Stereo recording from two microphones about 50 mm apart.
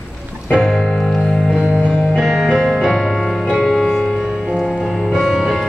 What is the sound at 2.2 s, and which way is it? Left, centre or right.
Music, centre.